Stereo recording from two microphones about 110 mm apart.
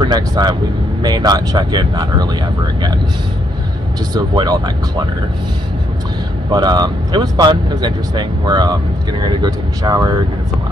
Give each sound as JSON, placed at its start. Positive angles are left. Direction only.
{"t": 0.0, "sound": "speech", "side_deg": -40}
{"t": 4.1, "sound": "speech", "side_deg": -40}
{"t": 6.5, "sound": "speech", "side_deg": -40}